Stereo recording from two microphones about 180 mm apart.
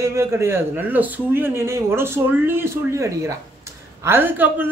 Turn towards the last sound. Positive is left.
turn(degrees=-10)  # may be behind; listen again after turning